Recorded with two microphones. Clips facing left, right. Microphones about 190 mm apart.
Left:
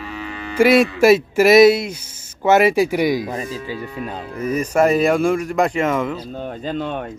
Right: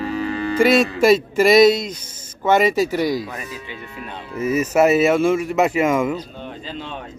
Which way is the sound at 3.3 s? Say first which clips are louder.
Left 6 dB; 30° left (ahead or behind).